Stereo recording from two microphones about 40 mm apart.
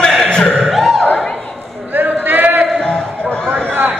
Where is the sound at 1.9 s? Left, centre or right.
Right.